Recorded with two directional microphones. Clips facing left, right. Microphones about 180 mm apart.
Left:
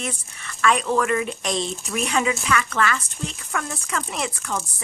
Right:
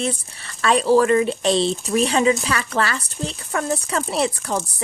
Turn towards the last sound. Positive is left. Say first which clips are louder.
# right 6 dB
turn(degrees=-35)  # may be behind; listen again after turning